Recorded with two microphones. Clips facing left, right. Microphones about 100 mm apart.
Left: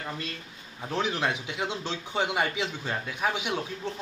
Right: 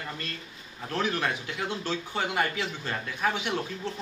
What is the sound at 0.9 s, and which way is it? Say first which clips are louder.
Speech: even; 15° left (ahead or behind).